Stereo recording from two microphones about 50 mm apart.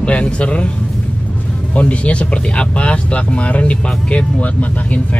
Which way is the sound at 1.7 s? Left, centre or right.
Left.